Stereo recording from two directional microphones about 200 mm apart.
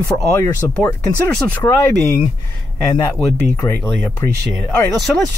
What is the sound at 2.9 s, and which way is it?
Speech, 15° left (ahead or behind).